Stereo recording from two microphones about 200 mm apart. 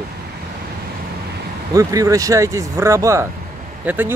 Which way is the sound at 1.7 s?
15° right (ahead or behind).